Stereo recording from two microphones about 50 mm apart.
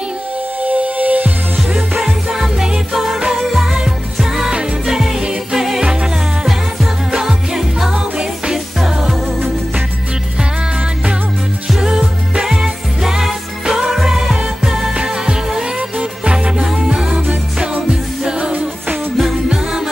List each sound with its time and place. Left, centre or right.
0.7 s music: right
2.0 s music: centre
11.8 s music: centre
18.2 s music: right